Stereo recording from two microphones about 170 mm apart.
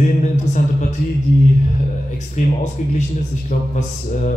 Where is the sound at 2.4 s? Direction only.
45° left (ahead or behind).